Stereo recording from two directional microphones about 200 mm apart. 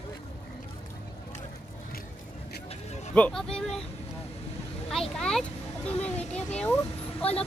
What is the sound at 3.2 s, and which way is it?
Speech, 5° left (ahead or behind).